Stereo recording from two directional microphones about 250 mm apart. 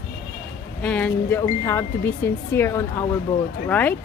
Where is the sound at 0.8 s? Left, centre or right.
Centre.